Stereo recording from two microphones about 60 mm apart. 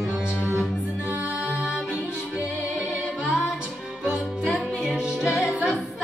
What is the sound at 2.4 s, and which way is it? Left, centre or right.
Music, right.